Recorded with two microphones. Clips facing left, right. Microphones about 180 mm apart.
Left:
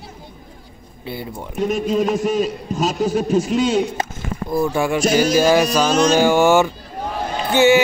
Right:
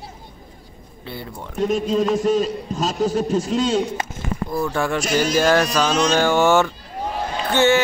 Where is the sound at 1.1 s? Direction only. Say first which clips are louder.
Left 4 dB; 10° left (ahead or behind).